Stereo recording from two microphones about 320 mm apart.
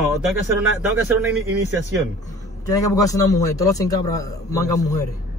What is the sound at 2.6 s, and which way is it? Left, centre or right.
A man's voice, centre.